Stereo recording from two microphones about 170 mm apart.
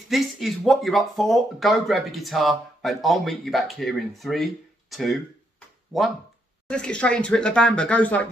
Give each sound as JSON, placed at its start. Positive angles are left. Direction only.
{"t": 0.1, "sound": "speech", "side_deg": 0}